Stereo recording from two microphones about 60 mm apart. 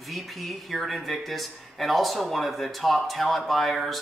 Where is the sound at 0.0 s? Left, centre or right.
Centre.